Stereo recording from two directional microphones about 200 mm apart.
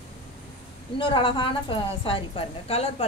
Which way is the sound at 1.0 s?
25° left (ahead or behind).